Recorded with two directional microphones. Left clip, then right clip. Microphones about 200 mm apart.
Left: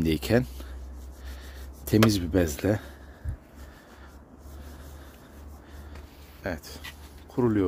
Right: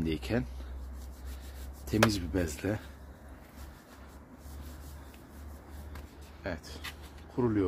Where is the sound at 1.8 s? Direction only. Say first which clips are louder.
Left 5 dB; 45° left (ahead or behind).